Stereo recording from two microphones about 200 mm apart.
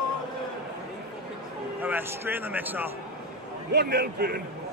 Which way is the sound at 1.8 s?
10° right (ahead or behind).